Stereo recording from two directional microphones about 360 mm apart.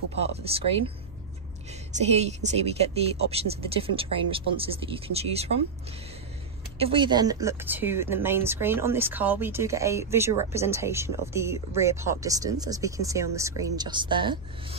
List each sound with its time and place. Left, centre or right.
0.3 s speech: centre
6.8 s speech: centre